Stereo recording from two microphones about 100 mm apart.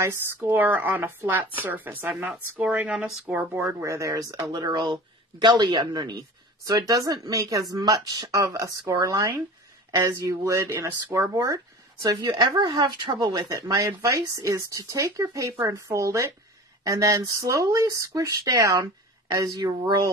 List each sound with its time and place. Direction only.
0.0 s speech: 25° right (ahead or behind)
3.8 s speech: 30° right (ahead or behind)